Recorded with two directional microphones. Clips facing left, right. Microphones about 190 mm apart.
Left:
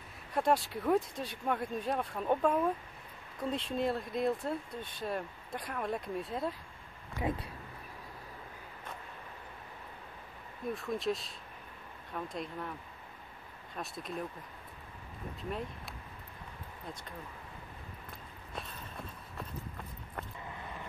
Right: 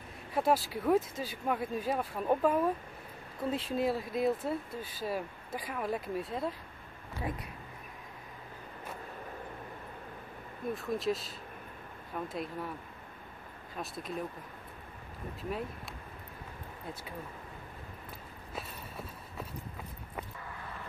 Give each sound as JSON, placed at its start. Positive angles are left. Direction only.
{"t": 0.3, "sound": "speech", "side_deg": -5}
{"t": 7.2, "sound": "speech", "side_deg": 20}
{"t": 10.7, "sound": "speech", "side_deg": 0}
{"t": 13.7, "sound": "speech", "side_deg": 0}